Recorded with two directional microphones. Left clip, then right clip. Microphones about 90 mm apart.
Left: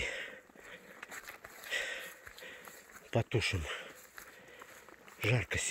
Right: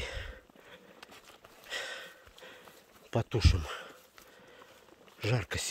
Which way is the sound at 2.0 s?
25° right (ahead or behind).